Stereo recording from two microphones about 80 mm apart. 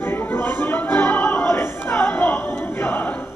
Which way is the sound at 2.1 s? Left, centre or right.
Left.